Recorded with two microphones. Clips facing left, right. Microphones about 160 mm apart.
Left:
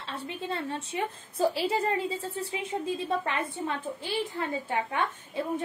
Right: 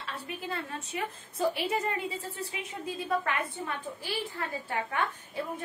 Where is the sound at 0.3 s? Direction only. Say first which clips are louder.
Left 4 dB; 25° left (ahead or behind).